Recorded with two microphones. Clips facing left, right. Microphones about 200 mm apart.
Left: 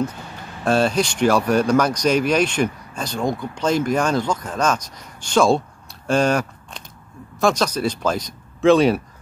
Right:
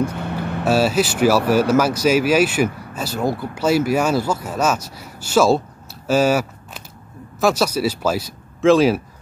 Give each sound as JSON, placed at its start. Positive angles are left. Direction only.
{"t": 0.1, "sound": "vehicle", "side_deg": -65}
{"t": 0.7, "sound": "speech", "side_deg": -5}